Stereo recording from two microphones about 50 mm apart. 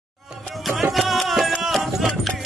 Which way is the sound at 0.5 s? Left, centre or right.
Centre.